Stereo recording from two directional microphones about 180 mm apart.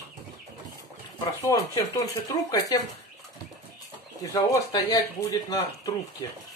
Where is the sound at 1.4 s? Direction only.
20° left (ahead or behind).